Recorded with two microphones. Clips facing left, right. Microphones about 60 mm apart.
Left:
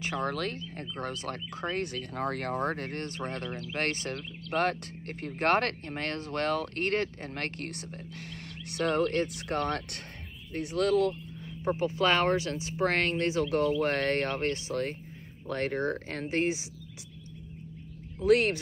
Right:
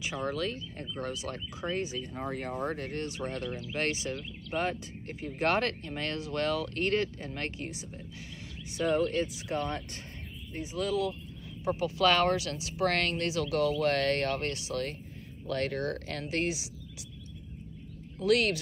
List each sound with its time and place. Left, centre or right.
0.0 s speech: left
11.6 s speech: left
18.2 s speech: left